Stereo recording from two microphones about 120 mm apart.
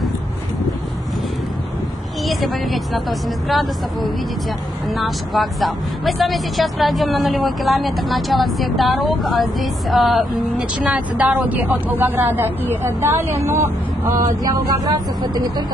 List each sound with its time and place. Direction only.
2.2 s speech: centre (ahead or behind); by 15.6 s 35° right (ahead or behind)